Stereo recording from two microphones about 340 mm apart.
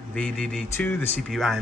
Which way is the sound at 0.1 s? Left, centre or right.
Centre.